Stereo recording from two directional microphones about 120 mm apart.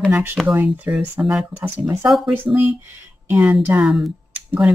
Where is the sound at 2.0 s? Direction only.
Centre (ahead or behind).